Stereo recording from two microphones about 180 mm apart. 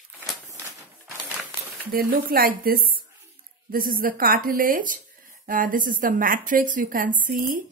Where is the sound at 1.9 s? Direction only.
55° right (ahead or behind).